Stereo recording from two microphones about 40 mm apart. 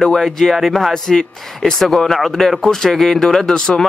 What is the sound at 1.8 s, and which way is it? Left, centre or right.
Speech, centre.